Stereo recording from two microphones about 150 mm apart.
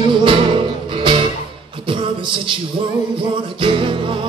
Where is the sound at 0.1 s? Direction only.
35° right (ahead or behind).